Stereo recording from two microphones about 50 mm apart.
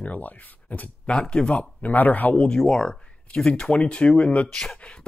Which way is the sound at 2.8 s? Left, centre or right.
Centre.